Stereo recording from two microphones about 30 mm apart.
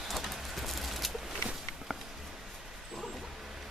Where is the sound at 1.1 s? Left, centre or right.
Centre.